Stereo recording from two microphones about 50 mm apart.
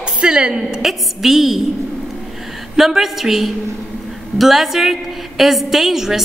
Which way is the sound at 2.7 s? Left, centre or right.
Centre.